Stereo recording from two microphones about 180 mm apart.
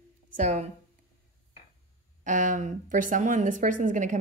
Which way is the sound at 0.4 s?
40° right (ahead or behind).